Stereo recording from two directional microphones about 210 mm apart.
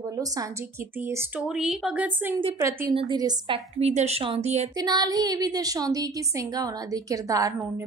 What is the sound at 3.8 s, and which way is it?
Speech, 30° right (ahead or behind).